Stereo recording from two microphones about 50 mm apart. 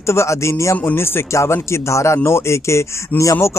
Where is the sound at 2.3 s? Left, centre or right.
Left.